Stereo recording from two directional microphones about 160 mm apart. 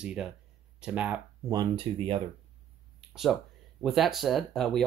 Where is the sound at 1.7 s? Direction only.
35° right (ahead or behind).